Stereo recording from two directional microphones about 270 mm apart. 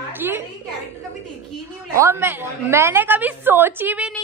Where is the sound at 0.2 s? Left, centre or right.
Centre.